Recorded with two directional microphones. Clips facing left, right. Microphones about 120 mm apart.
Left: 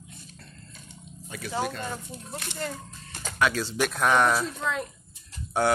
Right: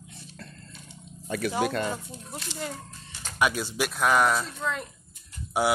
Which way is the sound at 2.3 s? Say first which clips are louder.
Left 1 dB; 60° left (ahead or behind).